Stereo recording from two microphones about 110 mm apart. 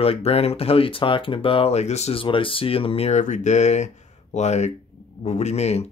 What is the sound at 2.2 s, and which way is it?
A man's voice, 55° left (ahead or behind).